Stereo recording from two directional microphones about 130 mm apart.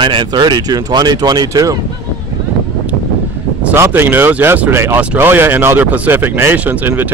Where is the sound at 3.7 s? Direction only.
15° right (ahead or behind).